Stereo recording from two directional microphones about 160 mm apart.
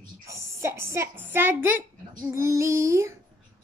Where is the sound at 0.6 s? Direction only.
15° right (ahead or behind).